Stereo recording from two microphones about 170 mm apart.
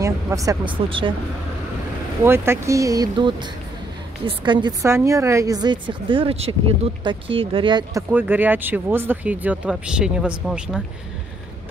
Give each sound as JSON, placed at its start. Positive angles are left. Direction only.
{"t": 0.0, "sound": "speech", "side_deg": -20}
{"t": 0.8, "sound": "speech", "side_deg": -30}
{"t": 2.2, "sound": "speech", "side_deg": -15}
{"t": 4.8, "sound": "speech", "side_deg": -15}
{"t": 8.1, "sound": "speech", "side_deg": -10}